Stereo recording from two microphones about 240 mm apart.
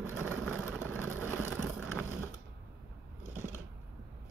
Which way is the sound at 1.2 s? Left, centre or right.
Centre.